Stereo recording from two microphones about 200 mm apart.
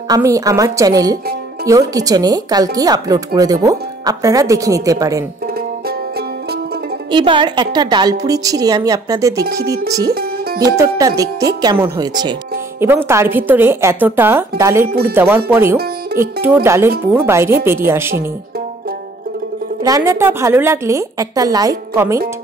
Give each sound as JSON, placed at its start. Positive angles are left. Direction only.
{"t": 0.1, "sound": "speech", "side_deg": -15}
{"t": 7.1, "sound": "a woman's voice", "side_deg": -25}
{"t": 19.8, "sound": "speech", "side_deg": -20}